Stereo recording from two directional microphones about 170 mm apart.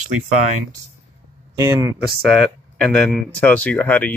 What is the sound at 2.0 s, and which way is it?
Speech, centre (ahead or behind).